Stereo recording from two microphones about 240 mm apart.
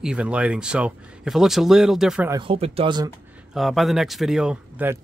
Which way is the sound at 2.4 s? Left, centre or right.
Right.